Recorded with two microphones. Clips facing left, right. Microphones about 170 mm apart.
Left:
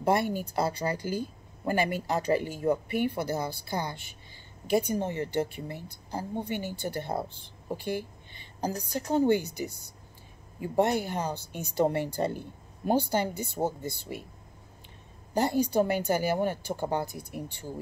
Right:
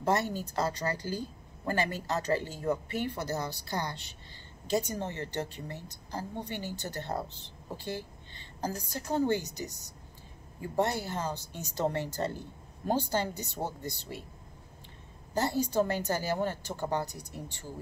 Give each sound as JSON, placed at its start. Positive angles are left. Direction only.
{"t": 0.0, "sound": "a woman's voice", "side_deg": 15}
{"t": 13.3, "sound": "a woman's voice", "side_deg": 55}
{"t": 15.3, "sound": "a woman's voice", "side_deg": 15}